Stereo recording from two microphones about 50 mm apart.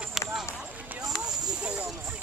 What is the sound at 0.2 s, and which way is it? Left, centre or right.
Run, centre.